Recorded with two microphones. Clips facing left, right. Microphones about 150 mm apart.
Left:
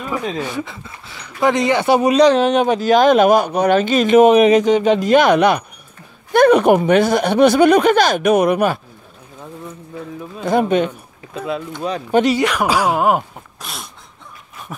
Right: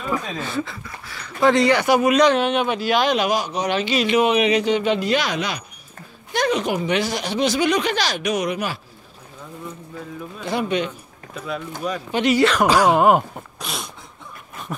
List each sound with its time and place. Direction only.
0.2 s speech: 15° left (ahead or behind); by 8.7 s 55° left (ahead or behind)
10.4 s speech: 45° left (ahead or behind)
12.1 s speech: 45° left (ahead or behind)
12.4 s speech: 10° left (ahead or behind)
14.7 s a sound: 5° left (ahead or behind)